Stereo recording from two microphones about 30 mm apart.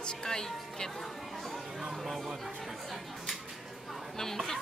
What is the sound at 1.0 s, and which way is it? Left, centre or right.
Speech, centre.